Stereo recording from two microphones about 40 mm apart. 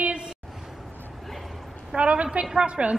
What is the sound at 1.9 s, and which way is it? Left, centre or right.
A woman's voice, right.